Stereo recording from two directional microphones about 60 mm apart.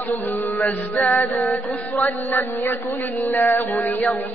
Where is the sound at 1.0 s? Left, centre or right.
Left.